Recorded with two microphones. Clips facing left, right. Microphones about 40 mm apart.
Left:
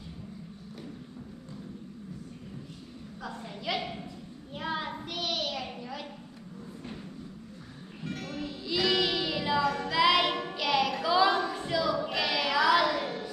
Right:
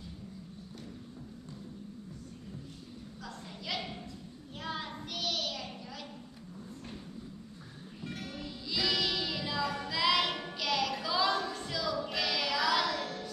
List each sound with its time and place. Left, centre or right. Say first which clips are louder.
3.2 s a sound: left 7 dB; centre
4.6 s child singing: left 5 dB; centre
8.0 s music: left 5 dB; centre
9.8 s child singing: left 4 dB; centre